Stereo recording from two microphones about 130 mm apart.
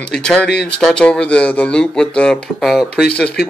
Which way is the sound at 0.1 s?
5° left (ahead or behind).